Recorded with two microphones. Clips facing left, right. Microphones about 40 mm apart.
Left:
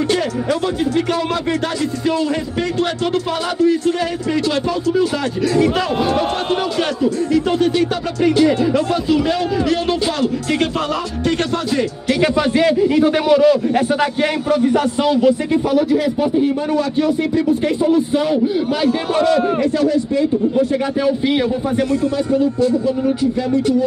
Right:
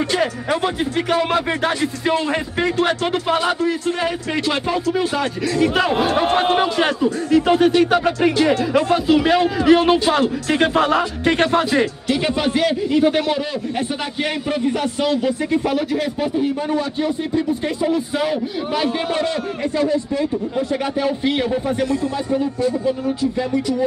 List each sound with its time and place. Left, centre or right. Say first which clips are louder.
0.1 s speech: left 2 dB; right
11.5 s speech: right 2 dB; right
12.2 s a man's voice: left 4 dB; centre
15.7 s speech: left 5 dB; centre
16.7 s speech: left 4 dB; right
18.1 s a man's voice: left 5 dB; centre
19.2 s speech: left 7 dB; right
20.5 s a man's voice: left 4 dB; centre